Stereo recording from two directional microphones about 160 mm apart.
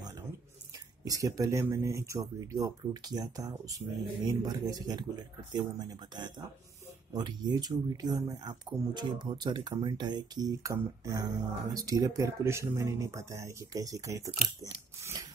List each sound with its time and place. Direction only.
1.0 s speech: 20° right (ahead or behind)